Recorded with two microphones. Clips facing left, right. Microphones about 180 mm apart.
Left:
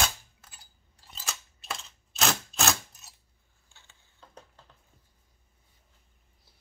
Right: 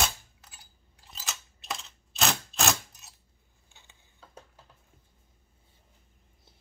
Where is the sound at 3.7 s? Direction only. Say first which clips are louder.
Right 1 dB; 15° right (ahead or behind).